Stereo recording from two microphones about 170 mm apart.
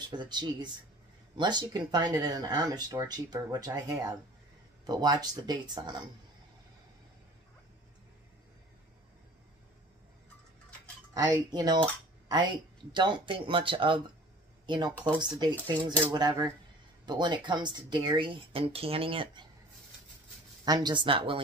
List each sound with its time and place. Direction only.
0.1 s speech: 25° right (ahead or behind)
11.1 s speech: 25° right (ahead or behind)
20.6 s speech: 25° right (ahead or behind)